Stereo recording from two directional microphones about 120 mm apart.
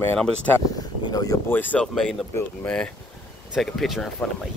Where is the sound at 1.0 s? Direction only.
30° left (ahead or behind).